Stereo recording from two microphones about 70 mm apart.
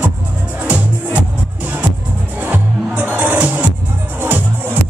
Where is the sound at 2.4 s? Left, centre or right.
Right.